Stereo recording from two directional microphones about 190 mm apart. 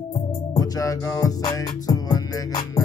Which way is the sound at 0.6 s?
15° left (ahead or behind).